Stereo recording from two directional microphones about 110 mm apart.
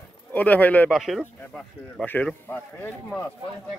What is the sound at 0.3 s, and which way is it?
Speech, 15° left (ahead or behind).